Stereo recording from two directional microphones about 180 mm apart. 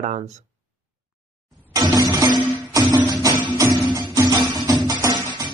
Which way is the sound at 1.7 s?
20° right (ahead or behind).